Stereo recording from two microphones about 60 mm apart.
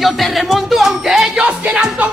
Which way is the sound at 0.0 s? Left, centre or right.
Centre.